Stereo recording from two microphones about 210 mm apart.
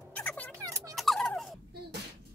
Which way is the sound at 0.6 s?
15° right (ahead or behind).